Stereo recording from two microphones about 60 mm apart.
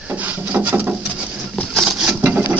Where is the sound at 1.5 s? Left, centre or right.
Centre.